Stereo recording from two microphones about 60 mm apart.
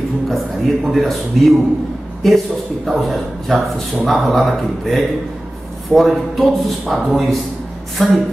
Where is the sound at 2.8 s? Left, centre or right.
Centre.